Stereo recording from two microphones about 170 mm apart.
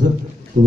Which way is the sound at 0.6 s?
55° right (ahead or behind).